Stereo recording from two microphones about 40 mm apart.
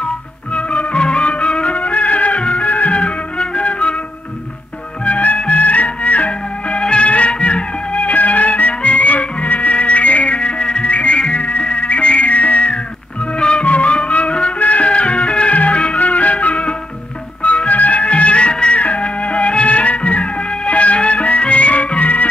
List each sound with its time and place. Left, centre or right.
0.5 s music: left
5.0 s music: left